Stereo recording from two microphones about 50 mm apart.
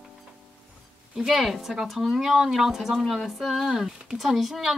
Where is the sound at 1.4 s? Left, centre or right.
Centre.